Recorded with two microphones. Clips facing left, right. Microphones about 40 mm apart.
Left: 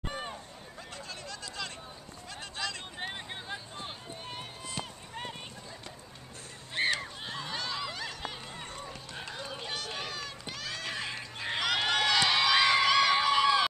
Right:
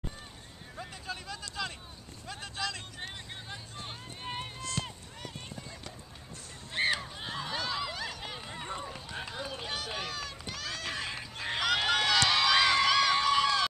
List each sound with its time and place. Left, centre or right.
0.7 s a sound: centre
3.0 s vehicle: centre
4.1 s run: centre
4.6 s run: centre
5.1 s clip-clop: left
6.7 s a sound: centre
8.8 s run: centre